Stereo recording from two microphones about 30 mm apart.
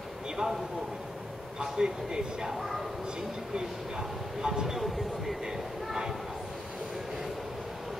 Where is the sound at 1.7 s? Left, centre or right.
Right.